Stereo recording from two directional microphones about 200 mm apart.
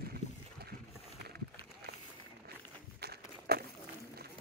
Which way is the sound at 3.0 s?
50° right (ahead or behind).